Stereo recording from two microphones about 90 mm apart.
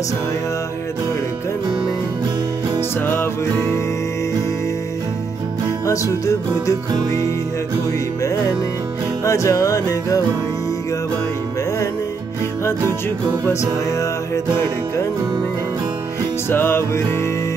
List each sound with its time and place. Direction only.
5.9 s music: 35° left (ahead or behind)
9.2 s music: 35° left (ahead or behind)
13.5 s music: 35° left (ahead or behind)
16.4 s music: 25° left (ahead or behind)